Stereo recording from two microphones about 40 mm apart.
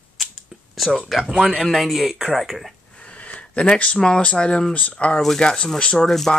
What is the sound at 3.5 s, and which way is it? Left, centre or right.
Speech, left.